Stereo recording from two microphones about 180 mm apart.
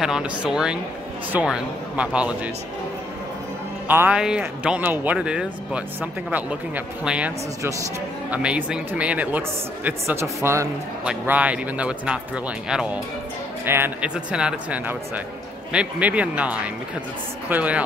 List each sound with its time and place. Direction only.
0.0 s speech: 5° right (ahead or behind)
3.8 s speech: 10° right (ahead or behind)